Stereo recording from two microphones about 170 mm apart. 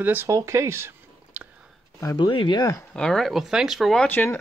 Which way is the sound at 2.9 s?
5° left (ahead or behind).